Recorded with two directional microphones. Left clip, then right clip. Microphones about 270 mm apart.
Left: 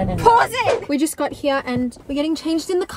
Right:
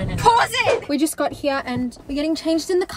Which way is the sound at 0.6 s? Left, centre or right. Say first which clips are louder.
Even; centre.